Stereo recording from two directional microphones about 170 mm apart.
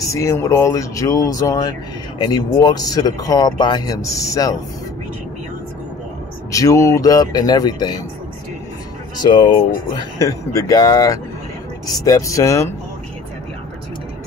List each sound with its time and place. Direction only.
0.0 s speech: 15° left (ahead or behind)
6.5 s speech: 20° left (ahead or behind)
9.2 s speech: 25° left (ahead or behind)